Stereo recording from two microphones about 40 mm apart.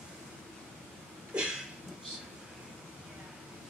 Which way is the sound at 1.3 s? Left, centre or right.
Right.